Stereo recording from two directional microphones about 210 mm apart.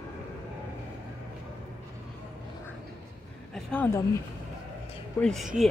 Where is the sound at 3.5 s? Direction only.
5° left (ahead or behind).